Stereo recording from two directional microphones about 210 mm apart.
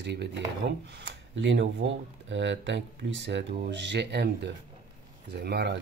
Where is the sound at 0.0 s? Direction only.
55° right (ahead or behind).